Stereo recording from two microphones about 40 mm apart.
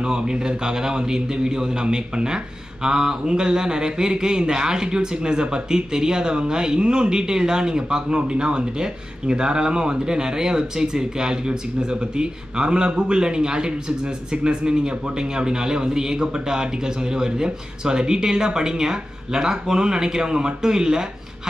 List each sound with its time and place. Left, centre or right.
0.0 s speech: right